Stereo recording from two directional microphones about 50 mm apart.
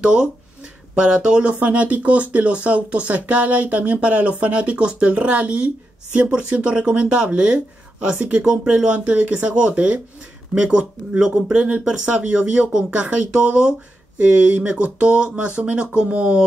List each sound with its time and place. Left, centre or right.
0.0 s speech: right